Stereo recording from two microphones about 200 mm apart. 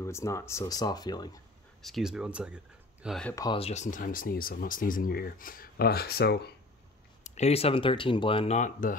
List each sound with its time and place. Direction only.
0.0 s speech: 15° left (ahead or behind)
1.8 s speech: centre (ahead or behind)
3.3 s speech: 25° left (ahead or behind); by 6.5 s 55° left (ahead or behind)
7.2 s speech: 35° left (ahead or behind)